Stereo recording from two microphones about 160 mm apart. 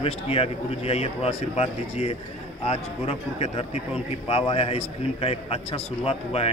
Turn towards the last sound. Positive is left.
turn(degrees=40)  # may be behind; listen again after turning